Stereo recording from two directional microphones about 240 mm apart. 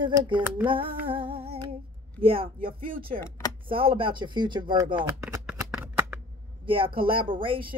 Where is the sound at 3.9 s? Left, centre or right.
Right.